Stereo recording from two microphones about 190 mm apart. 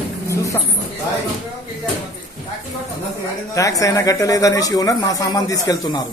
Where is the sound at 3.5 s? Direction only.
15° left (ahead or behind).